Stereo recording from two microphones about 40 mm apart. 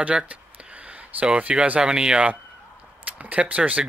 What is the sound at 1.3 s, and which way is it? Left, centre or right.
Speech, right.